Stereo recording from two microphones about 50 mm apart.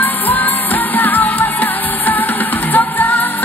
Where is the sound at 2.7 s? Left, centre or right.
Left.